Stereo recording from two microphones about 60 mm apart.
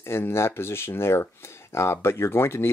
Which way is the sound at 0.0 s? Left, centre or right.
Left.